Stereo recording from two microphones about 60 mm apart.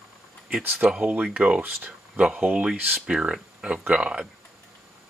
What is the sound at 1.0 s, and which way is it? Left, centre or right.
Speech, right.